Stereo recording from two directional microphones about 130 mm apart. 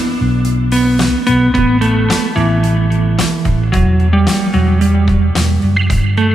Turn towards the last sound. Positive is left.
turn(degrees=0)  # may be behind; listen again after turning